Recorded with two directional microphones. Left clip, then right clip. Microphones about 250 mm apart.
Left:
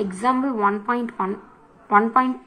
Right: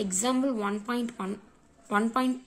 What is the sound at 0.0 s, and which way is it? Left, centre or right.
Speech, right.